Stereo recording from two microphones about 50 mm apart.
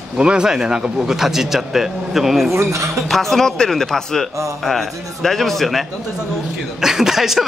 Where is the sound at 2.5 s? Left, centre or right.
Right.